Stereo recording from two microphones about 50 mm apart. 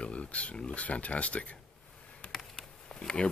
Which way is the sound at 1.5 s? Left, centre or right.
Left.